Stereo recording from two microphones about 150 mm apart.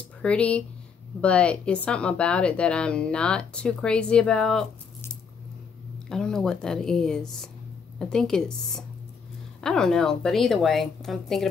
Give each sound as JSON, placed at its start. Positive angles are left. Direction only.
{"t": 0.2, "sound": "speech", "side_deg": 10}
{"t": 6.0, "sound": "a woman's voice", "side_deg": 5}